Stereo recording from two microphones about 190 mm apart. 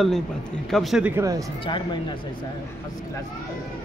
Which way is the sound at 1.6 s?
25° left (ahead or behind).